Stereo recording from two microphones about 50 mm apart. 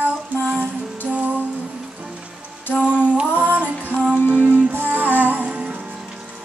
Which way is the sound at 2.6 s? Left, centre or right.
Left.